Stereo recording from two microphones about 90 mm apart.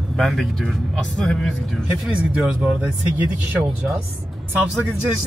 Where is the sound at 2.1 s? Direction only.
10° right (ahead or behind).